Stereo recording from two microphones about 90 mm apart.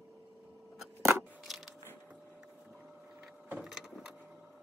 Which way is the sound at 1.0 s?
30° right (ahead or behind).